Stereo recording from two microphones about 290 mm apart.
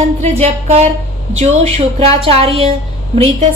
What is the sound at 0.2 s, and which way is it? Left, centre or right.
A woman's voice, right.